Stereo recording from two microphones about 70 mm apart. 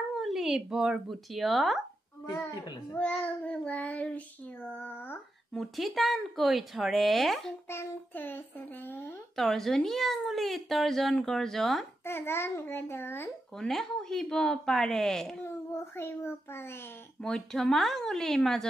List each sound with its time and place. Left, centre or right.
0.1 s a sound: centre
1.1 s speech: centre
3.0 s a child's voice: centre
4.6 s a child's voice: left
5.5 s speech: centre
7.7 s a child's voice: left
9.4 s speech: centre
12.0 s a child's voice: left
13.6 s speech: centre
15.4 s a child's voice: left
17.2 s speech: centre